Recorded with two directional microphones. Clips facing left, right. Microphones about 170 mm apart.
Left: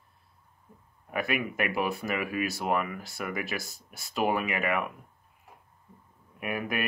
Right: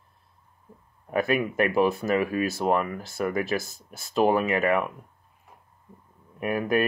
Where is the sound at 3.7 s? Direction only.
50° right (ahead or behind).